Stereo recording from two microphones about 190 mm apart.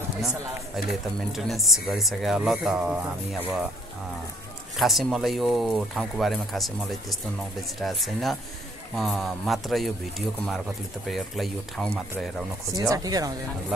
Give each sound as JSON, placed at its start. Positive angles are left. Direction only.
{"t": 0.2, "sound": "speech", "side_deg": 0}
{"t": 4.7, "sound": "speech", "side_deg": 0}
{"t": 12.8, "sound": "speech", "side_deg": -20}